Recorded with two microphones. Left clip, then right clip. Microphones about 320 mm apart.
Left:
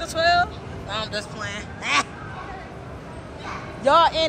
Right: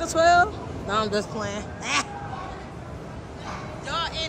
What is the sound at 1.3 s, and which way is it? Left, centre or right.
Speech, centre.